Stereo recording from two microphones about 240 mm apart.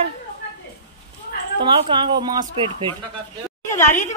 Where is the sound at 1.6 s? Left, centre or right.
Right.